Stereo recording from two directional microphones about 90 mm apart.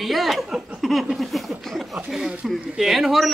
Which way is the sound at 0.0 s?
Centre (ahead or behind).